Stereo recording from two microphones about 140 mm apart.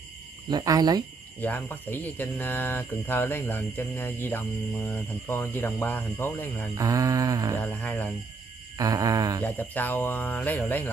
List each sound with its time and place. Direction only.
0.5 s mantra: 30° right (ahead or behind)
1.4 s speech: 15° left (ahead or behind)
6.8 s mantra: 25° right (ahead or behind)
7.5 s speech: 15° left (ahead or behind)
8.7 s mantra: 25° right (ahead or behind)
9.4 s speech: 15° left (ahead or behind)